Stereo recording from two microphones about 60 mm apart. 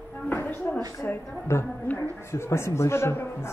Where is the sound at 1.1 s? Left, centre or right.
Left.